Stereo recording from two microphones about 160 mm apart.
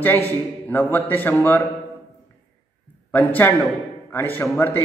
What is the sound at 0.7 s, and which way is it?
Speech, 10° left (ahead or behind).